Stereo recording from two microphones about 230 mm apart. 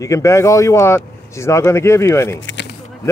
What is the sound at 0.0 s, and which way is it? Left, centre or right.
Speech, centre.